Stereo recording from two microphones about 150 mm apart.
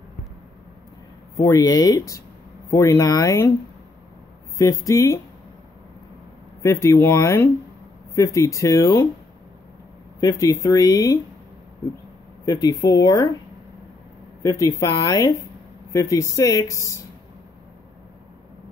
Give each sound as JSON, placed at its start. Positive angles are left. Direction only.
{"t": 1.3, "sound": "speech", "side_deg": 20}
{"t": 4.6, "sound": "speech", "side_deg": 20}
{"t": 6.6, "sound": "speech", "side_deg": 20}
{"t": 10.2, "sound": "speech", "side_deg": 20}
{"t": 12.4, "sound": "speech", "side_deg": 25}
{"t": 14.4, "sound": "speech", "side_deg": 20}